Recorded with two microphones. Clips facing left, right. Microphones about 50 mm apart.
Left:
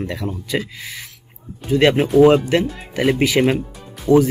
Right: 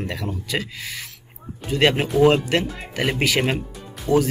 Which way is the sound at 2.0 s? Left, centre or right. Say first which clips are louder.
Left 5 dB; centre.